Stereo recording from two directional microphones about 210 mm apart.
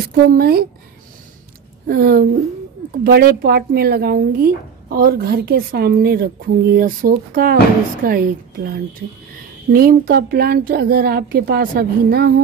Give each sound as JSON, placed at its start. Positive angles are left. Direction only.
{"t": 0.0, "sound": "speech", "side_deg": -45}
{"t": 1.9, "sound": "speech", "side_deg": -45}